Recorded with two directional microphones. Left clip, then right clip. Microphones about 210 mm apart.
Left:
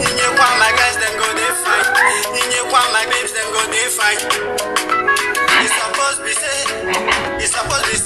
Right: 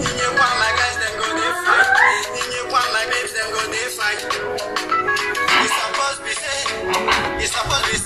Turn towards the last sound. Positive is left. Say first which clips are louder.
# left 3 dB
turn(degrees=20)  # may be behind; listen again after turning